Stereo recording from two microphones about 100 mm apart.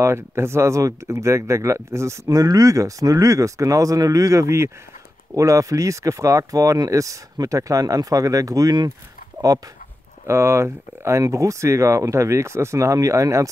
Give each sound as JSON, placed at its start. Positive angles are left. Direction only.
{"t": 0.0, "sound": "speech", "side_deg": -25}